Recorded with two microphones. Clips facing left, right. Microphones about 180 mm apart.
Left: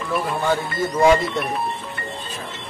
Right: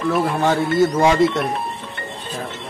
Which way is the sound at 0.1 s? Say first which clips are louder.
Right 2 dB; 80° right.